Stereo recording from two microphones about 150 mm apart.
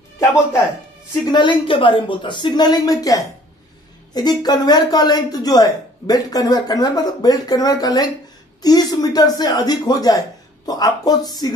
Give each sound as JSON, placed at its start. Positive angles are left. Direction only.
{"t": 1.3, "sound": "speech", "side_deg": 30}